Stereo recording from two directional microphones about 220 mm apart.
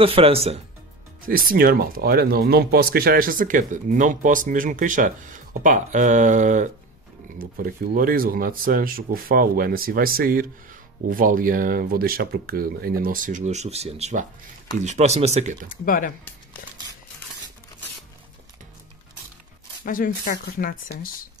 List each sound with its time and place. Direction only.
0.0 s speech: 25° right (ahead or behind)
1.2 s speech: 40° right (ahead or behind)
15.7 s speech: 40° left (ahead or behind)
19.8 s speech: 40° left (ahead or behind)